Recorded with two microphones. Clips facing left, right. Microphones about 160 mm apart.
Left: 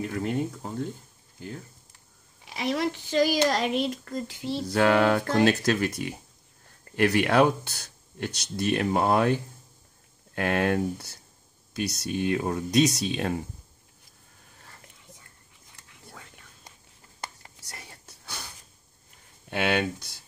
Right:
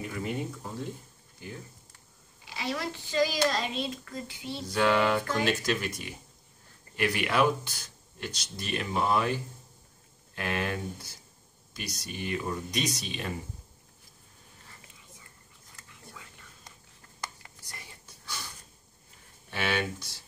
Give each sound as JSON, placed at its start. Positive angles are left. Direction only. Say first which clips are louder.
{"t": 0.0, "sound": "speech", "louder": "left 5 dB", "side_deg": 60}
{"t": 2.4, "sound": "a woman's voice", "louder": "left 6 dB", "side_deg": 60}
{"t": 15.9, "sound": "whispering", "louder": "left 2 dB", "side_deg": 55}
{"t": 17.6, "sound": "whispering", "louder": "left 3 dB", "side_deg": 70}
{"t": 19.5, "sound": "speech", "louder": "left 5 dB", "side_deg": 55}